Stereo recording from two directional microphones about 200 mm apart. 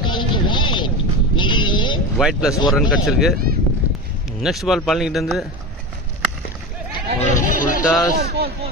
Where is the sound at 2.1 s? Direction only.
Centre (ahead or behind).